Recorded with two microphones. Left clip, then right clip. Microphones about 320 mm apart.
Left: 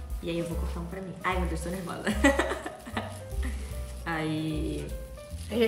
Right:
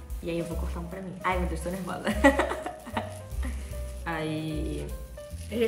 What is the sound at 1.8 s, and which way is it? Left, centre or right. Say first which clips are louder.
Speech: right 3 dB; centre.